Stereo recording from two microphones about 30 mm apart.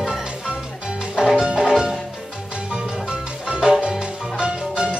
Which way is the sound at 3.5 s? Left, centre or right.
Right.